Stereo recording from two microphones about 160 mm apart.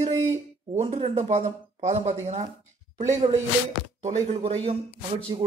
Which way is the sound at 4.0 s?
40° right (ahead or behind).